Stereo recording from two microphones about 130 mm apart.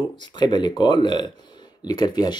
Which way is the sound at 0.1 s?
35° left (ahead or behind).